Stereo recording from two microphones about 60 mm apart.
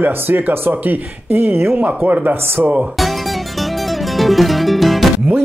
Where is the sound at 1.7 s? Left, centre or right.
Right.